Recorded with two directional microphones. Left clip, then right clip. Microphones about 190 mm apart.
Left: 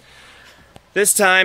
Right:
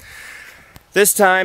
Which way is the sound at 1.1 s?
30° right (ahead or behind).